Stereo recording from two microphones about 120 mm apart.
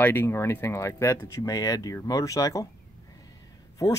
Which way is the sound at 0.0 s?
20° left (ahead or behind).